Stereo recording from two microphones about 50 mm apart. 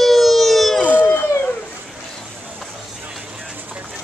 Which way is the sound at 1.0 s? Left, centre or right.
Left.